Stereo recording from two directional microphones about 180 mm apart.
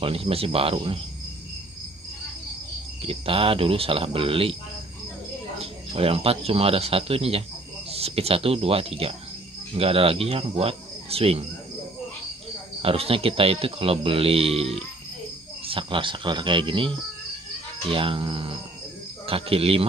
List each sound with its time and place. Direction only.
0.0 s speech: 30° right (ahead or behind)
3.0 s speech: 30° right (ahead or behind)
5.6 s speech: 35° right (ahead or behind)
12.8 s speech: 30° right (ahead or behind)